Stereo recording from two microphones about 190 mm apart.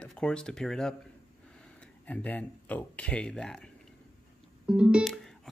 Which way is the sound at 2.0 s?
10° left (ahead or behind).